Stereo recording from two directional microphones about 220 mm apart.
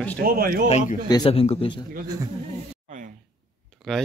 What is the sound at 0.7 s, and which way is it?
Speech, 30° left (ahead or behind).